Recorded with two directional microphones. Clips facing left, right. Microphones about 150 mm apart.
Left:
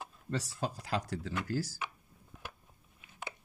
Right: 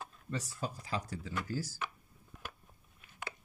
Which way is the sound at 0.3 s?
85° left.